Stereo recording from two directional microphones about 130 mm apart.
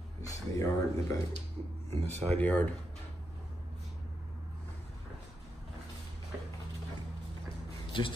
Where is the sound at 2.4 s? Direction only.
10° left (ahead or behind).